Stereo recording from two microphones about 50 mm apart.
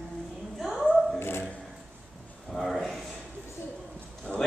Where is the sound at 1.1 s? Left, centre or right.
Left.